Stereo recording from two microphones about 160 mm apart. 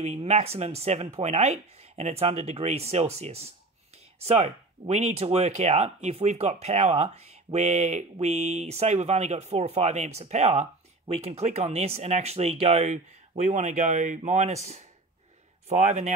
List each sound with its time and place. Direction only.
0.0 s speech: 45° right (ahead or behind)